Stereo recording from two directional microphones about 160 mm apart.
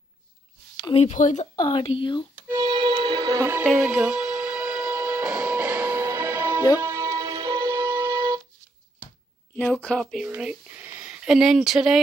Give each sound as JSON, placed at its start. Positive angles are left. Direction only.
{"t": 0.9, "sound": "speech", "side_deg": 45}
{"t": 1.6, "sound": "speech", "side_deg": 30}
{"t": 2.4, "sound": "music", "side_deg": -25}
{"t": 3.6, "sound": "music", "side_deg": -5}
{"t": 9.6, "sound": "speech", "side_deg": 10}
{"t": 10.2, "sound": "speech", "side_deg": -5}